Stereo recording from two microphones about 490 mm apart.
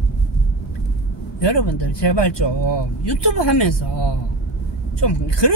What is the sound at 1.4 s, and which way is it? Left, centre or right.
Speech, left.